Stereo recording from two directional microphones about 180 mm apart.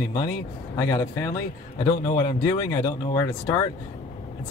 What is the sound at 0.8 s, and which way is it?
Speech, 20° left (ahead or behind).